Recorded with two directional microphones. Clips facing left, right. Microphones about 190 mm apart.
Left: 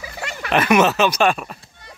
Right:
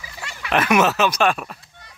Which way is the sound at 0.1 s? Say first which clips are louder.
Left 4 dB; 45° left (ahead or behind).